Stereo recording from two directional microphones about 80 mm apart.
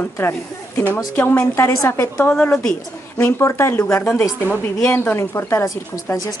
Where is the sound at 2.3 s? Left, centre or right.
Centre.